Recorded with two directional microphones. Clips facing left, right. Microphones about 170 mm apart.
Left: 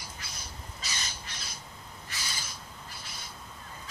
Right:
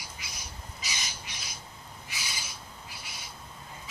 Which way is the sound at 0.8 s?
10° right (ahead or behind).